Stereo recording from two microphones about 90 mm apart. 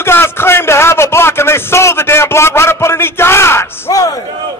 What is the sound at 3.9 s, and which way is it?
Speech, 40° left (ahead or behind).